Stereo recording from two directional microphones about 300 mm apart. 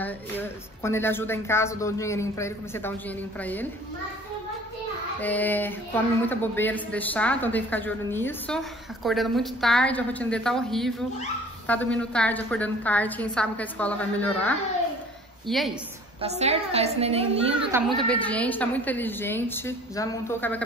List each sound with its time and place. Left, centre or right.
0.0 s a woman's voice: centre
5.2 s a woman's voice: centre
16.2 s a woman's voice: right
17.6 s a woman's voice: centre